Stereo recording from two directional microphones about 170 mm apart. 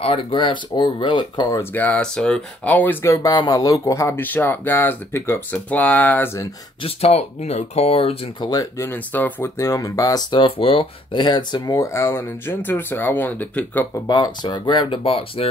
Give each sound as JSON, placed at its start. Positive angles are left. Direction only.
{"t": 0.0, "sound": "speech", "side_deg": 35}
{"t": 6.8, "sound": "speech", "side_deg": 40}
{"t": 8.5, "sound": "speech", "side_deg": 20}
{"t": 14.0, "sound": "speech", "side_deg": 25}